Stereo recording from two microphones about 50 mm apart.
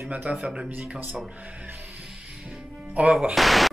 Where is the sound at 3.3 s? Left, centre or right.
Centre.